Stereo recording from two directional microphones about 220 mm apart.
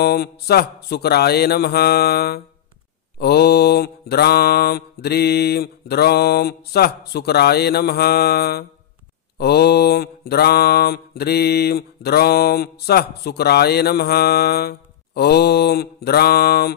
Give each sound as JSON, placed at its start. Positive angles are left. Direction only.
{"t": 0.0, "sound": "mantra", "side_deg": 45}